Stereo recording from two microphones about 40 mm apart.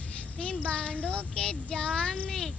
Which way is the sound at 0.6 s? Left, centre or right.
Left.